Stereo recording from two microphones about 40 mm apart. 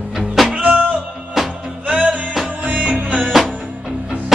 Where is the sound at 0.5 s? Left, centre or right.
Right.